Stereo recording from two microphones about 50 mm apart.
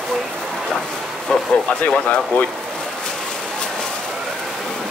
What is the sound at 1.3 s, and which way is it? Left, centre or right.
Speech, centre.